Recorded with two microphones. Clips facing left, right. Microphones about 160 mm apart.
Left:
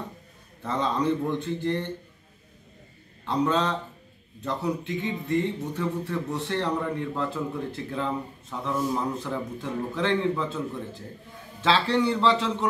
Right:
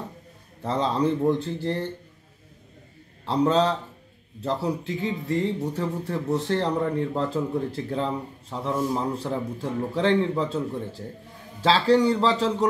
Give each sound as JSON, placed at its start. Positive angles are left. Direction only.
{"t": 0.6, "sound": "speech", "side_deg": -35}
{"t": 3.3, "sound": "speech", "side_deg": -35}